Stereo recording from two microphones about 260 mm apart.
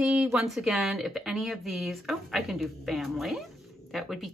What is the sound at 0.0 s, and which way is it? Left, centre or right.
Speech, centre.